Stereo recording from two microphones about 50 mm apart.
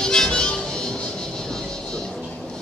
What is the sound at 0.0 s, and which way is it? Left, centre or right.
Music, centre.